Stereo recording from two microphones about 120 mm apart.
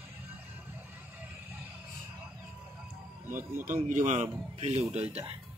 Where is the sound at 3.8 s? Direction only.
85° right.